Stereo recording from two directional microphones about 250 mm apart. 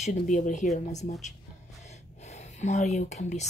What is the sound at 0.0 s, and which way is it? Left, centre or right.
Speech, left.